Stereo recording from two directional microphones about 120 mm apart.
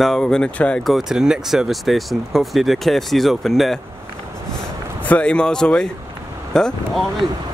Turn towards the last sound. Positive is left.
turn(degrees=5)  # may be behind; listen again after turning